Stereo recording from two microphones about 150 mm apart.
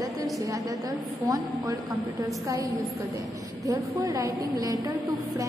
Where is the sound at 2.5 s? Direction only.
25° right (ahead or behind).